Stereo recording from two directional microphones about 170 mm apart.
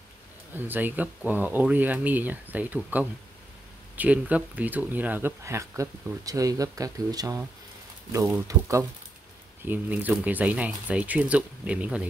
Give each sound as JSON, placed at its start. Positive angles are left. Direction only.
{"t": 0.6, "sound": "speech", "side_deg": -10}